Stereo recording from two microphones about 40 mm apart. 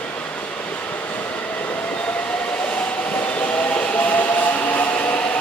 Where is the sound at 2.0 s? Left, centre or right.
Left.